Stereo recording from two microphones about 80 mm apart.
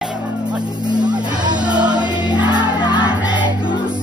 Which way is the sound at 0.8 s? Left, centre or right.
Right.